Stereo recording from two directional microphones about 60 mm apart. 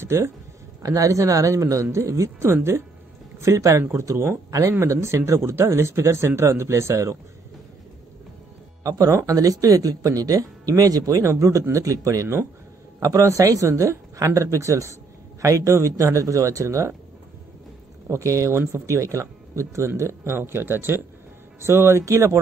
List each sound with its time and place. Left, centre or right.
0.0 s speech: right
0.8 s speech: right
3.3 s speech: right
4.5 s speech: right
4.7 s speech: right
8.8 s speech: right
9.1 s speech: right
11.7 s speech: right
18.0 s speech: right